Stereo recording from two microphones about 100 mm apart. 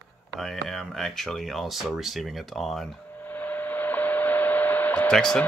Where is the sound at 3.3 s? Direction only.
15° left (ahead or behind).